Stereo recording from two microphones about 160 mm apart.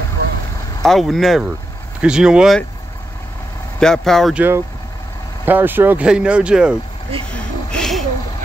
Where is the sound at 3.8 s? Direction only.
5° left (ahead or behind).